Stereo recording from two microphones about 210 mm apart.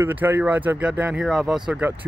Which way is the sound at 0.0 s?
10° right (ahead or behind).